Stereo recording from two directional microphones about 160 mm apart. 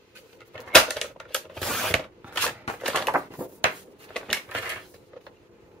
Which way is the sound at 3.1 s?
10° right (ahead or behind).